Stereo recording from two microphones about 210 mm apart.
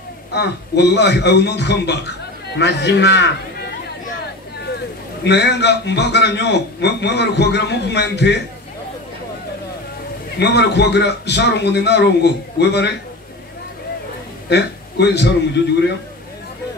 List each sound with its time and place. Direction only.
0.3 s a man's voice: 50° left (ahead or behind)
5.2 s a man's voice: 55° left (ahead or behind)
10.4 s a man's voice: 55° left (ahead or behind)
14.5 s speech: 55° left (ahead or behind)